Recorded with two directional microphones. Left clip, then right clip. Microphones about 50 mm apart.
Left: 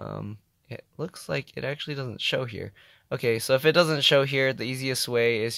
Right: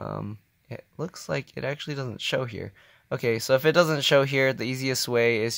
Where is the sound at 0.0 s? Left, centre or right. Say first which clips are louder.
Right 3 dB; centre.